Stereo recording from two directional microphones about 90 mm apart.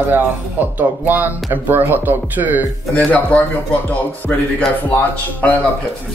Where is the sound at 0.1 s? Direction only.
20° right (ahead or behind).